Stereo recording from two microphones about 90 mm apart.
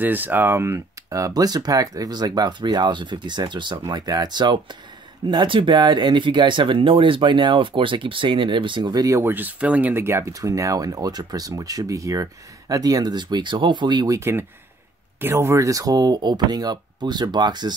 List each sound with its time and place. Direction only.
0.0 s speech: 20° right (ahead or behind); by 8.9 s 65° right (ahead or behind)
8.9 s speech: 40° right (ahead or behind)
9.2 s speech: 20° right (ahead or behind); by 14.0 s 55° right (ahead or behind)
14.0 s speech: 40° right (ahead or behind); by 17.7 s 55° right (ahead or behind)